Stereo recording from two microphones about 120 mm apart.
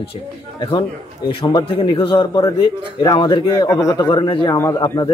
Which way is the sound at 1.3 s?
45° left (ahead or behind).